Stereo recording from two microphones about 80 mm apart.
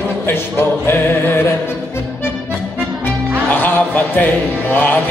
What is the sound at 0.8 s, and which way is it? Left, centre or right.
Music, left.